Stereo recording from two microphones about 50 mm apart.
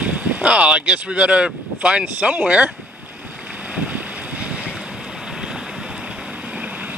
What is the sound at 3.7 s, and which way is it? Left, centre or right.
Boat, right.